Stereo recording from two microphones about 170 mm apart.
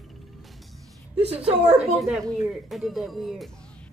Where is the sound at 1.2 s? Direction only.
35° right (ahead or behind).